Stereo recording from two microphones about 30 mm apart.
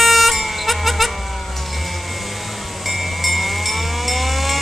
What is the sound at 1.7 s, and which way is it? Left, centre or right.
Vehicle, centre.